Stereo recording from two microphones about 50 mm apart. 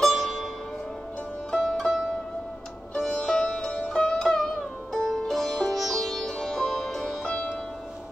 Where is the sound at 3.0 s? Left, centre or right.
Centre.